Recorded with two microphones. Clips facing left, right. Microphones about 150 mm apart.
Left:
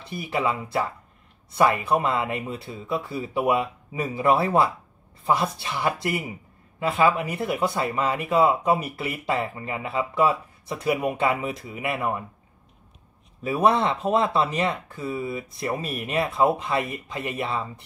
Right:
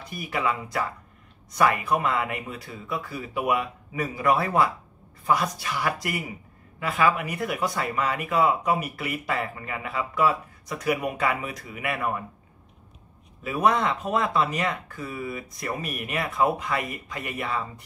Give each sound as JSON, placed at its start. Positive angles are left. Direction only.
{"t": 0.0, "sound": "speech", "side_deg": 25}
{"t": 13.4, "sound": "speech", "side_deg": 30}